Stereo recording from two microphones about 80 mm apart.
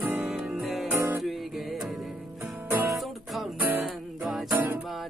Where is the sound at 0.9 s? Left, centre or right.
Right.